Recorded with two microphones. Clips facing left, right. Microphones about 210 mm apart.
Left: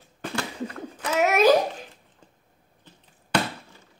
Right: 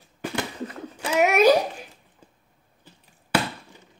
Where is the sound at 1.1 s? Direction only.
10° right (ahead or behind).